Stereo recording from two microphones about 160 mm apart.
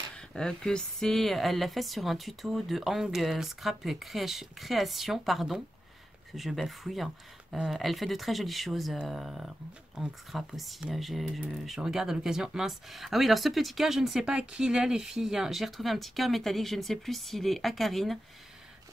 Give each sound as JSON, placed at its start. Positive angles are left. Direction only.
{"t": 0.1, "sound": "speech", "side_deg": 5}